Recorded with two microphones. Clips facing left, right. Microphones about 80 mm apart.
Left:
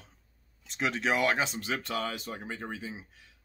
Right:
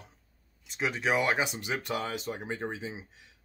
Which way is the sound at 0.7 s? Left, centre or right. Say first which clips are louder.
Even; centre.